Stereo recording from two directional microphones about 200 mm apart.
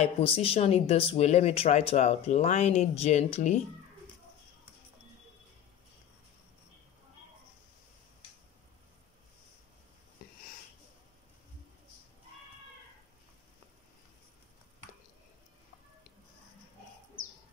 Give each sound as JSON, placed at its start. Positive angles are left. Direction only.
{"t": 0.0, "sound": "speech", "side_deg": 30}